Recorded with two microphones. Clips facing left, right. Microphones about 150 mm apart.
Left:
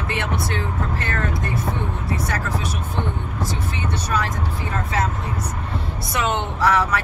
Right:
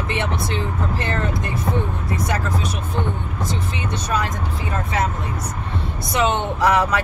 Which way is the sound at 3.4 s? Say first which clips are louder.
Right 1 dB; 20° right (ahead or behind).